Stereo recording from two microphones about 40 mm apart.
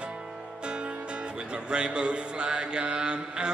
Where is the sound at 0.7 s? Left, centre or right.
Right.